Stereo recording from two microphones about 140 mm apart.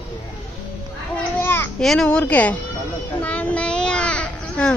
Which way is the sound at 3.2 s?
10° left (ahead or behind).